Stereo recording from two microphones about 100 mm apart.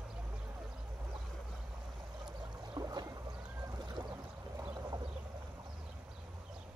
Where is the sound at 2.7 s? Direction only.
40° right (ahead or behind).